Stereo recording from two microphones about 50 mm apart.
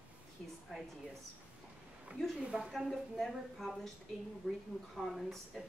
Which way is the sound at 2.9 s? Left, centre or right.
Centre.